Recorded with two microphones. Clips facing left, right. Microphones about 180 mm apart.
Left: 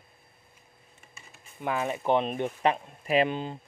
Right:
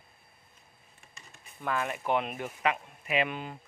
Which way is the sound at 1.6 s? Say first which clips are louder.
Left 3 dB; 20° left (ahead or behind).